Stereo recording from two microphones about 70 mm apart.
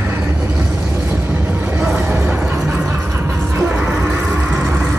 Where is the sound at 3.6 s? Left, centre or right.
Right.